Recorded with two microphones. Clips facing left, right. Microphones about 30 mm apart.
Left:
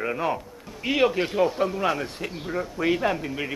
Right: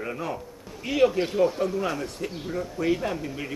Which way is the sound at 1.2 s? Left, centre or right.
Centre.